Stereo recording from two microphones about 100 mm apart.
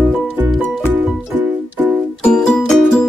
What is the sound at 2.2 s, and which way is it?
Music, 5° left (ahead or behind).